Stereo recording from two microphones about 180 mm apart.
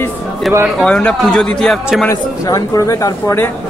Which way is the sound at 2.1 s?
20° left (ahead or behind).